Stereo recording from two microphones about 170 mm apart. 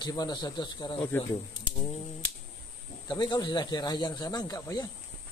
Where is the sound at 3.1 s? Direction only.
25° left (ahead or behind).